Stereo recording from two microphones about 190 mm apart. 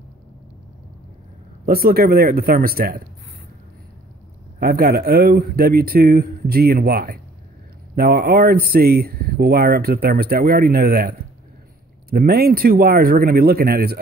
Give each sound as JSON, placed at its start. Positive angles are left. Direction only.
{"t": 1.7, "sound": "speech", "side_deg": -55}
{"t": 4.6, "sound": "speech", "side_deg": -50}